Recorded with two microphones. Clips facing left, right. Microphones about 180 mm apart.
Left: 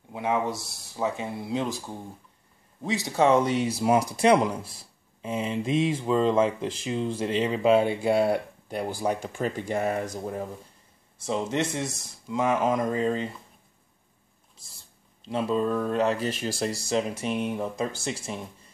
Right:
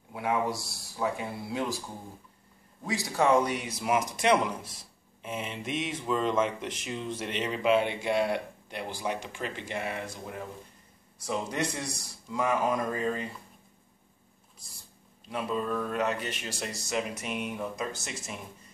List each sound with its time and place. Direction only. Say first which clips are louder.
0.1 s speech: left 2 dB; 20° left (ahead or behind)
2.8 s speech: left 4 dB; 25° left (ahead or behind)
11.1 s speech: left 4 dB; 25° left (ahead or behind)
14.6 s a sound: right 1 dB; 25° left (ahead or behind)
15.2 s speech: left 6 dB; 30° left (ahead or behind)